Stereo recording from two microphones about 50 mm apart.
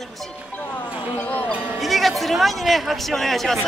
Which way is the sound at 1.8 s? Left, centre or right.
Centre.